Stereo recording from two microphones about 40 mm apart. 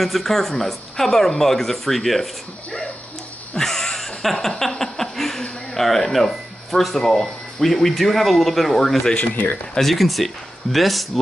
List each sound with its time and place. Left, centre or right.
0.0 s speech: centre
3.5 s a sound: centre
5.8 s speech: centre
9.2 s speech: left
9.8 s speech: centre